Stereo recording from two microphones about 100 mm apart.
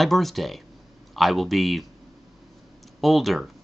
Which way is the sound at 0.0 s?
Centre (ahead or behind).